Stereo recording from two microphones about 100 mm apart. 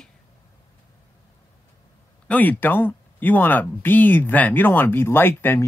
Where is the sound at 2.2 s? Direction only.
15° left (ahead or behind).